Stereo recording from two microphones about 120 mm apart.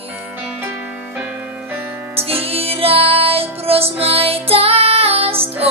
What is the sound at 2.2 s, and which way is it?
Music, 55° right (ahead or behind).